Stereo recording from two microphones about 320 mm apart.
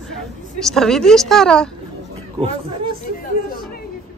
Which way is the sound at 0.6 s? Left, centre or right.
Centre.